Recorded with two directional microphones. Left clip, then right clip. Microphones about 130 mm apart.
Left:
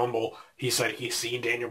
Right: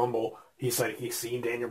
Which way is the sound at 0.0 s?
Centre (ahead or behind).